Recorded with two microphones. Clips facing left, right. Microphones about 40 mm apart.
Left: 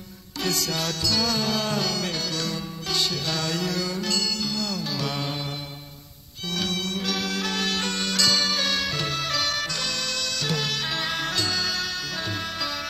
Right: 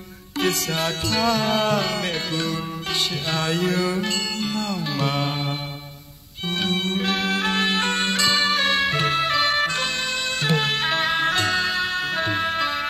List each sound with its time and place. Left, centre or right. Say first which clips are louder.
0.4 s music: right 4 dB; right
6.5 s music: right 4 dB; right